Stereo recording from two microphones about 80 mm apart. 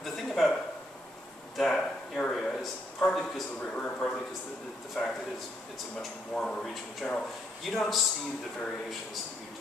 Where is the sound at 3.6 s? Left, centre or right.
Centre.